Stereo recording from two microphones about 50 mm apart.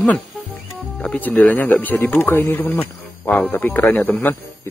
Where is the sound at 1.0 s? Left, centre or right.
Left.